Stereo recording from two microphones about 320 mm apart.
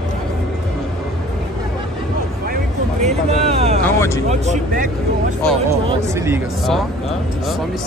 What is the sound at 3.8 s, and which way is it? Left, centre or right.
Speech, centre.